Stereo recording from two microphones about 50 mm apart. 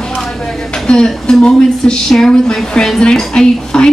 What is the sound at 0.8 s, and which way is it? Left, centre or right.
Speech, centre.